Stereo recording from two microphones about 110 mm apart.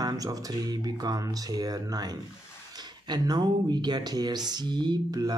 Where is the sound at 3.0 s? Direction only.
40° right (ahead or behind).